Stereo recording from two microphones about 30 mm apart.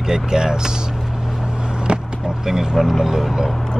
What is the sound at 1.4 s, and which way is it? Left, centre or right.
Vehicle, right.